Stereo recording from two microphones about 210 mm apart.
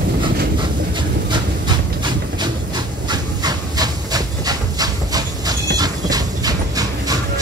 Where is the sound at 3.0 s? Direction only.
20° right (ahead or behind).